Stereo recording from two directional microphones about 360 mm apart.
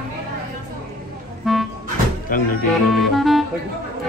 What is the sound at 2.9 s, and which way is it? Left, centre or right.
Music, centre.